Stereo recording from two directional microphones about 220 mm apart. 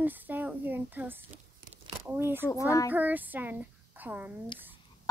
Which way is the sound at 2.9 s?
10° right (ahead or behind).